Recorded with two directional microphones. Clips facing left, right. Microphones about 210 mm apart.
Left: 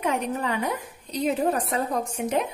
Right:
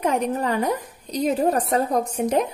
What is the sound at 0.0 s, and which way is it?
A woman's voice, 40° right (ahead or behind).